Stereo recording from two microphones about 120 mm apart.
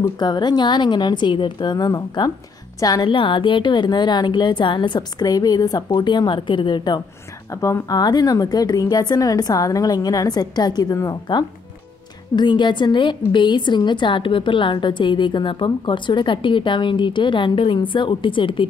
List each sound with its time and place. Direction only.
0.2 s a woman's voice: 35° left (ahead or behind)